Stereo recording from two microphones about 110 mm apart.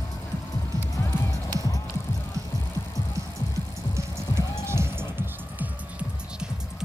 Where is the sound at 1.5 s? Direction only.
30° left (ahead or behind).